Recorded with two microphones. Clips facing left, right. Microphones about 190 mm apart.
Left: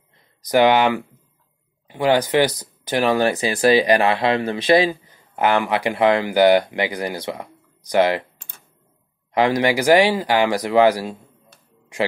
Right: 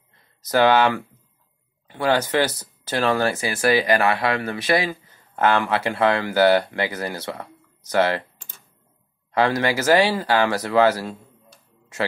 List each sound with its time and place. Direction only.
0.5 s speech: 15° left (ahead or behind)
9.3 s speech: 15° left (ahead or behind)